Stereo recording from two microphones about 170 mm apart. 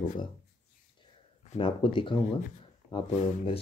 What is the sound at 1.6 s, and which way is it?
Speech, 30° left (ahead or behind).